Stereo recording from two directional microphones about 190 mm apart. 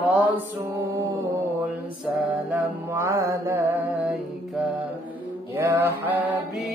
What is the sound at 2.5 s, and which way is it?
Mantra, 15° right (ahead or behind).